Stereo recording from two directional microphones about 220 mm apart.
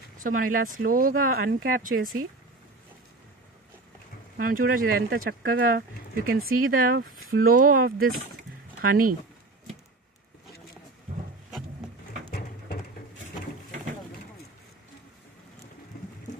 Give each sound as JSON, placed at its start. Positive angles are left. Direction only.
{"t": 0.2, "sound": "speech", "side_deg": -40}
{"t": 4.4, "sound": "speech", "side_deg": -40}
{"t": 12.3, "sound": "a sound", "side_deg": 45}